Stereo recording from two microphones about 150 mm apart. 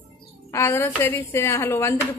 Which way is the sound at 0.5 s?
15° left (ahead or behind).